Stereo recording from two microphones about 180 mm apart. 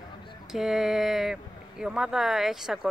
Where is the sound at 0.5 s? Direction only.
Centre (ahead or behind).